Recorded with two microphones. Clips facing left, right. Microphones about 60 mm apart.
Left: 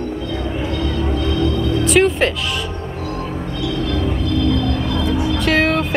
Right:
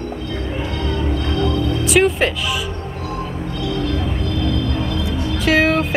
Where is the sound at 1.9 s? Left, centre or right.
Centre.